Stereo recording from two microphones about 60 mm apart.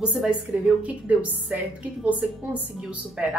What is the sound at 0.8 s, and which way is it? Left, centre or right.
Speech, right.